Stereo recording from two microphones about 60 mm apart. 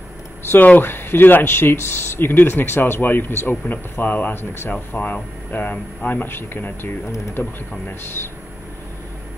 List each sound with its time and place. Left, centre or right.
0.5 s speech: left